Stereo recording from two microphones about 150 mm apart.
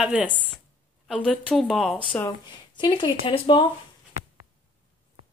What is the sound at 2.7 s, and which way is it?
Speech, 30° left (ahead or behind).